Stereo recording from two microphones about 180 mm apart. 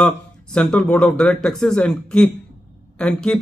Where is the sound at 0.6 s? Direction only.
5° left (ahead or behind).